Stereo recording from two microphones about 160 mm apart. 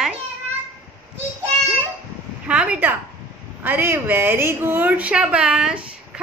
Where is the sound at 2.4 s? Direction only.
5° right (ahead or behind).